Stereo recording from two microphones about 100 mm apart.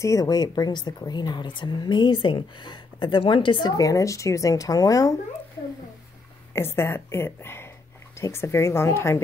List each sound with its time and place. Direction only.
0.0 s a woman's voice: 35° left (ahead or behind); by 3.7 s 55° left (ahead or behind)
3.7 s speech: 35° left (ahead or behind)
6.5 s a woman's voice: 25° left (ahead or behind)